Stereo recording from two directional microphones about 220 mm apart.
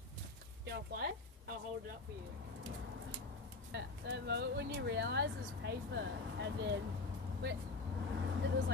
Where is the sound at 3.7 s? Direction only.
50° right (ahead or behind).